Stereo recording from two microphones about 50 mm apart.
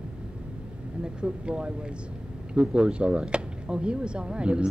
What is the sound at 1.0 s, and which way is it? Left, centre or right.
A woman's voice, centre.